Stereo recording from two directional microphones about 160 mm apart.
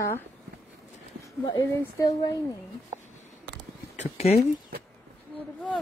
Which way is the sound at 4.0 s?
40° left (ahead or behind).